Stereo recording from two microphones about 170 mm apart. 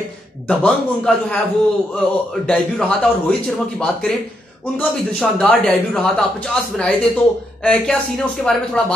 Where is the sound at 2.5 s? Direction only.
5° left (ahead or behind).